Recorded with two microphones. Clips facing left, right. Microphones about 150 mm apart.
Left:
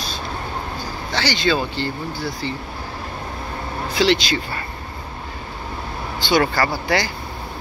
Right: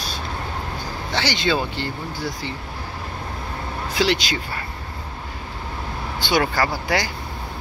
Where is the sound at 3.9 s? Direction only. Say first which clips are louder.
Left 3 dB; 10° right (ahead or behind).